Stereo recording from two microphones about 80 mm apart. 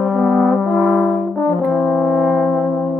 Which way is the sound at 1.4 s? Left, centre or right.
Centre.